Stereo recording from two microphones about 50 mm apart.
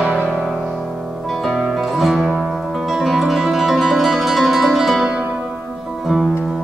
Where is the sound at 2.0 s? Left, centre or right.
Centre.